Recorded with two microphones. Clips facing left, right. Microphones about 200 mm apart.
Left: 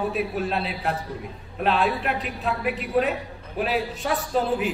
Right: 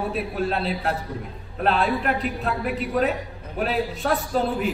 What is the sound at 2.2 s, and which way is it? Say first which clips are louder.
Speech: right 1 dB; centre (ahead or behind).